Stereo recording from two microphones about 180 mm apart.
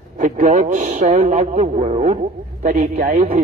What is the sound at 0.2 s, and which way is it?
A man's voice, 45° right (ahead or behind).